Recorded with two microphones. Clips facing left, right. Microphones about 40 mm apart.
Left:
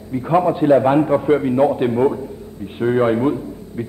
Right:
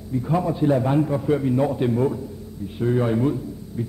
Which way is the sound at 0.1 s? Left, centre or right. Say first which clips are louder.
Left 6 dB; left.